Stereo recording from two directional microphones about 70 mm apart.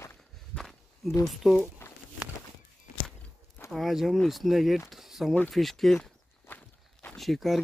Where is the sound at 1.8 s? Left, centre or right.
Left.